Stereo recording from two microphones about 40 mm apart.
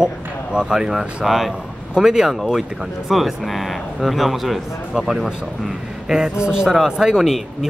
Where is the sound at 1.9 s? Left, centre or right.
Centre.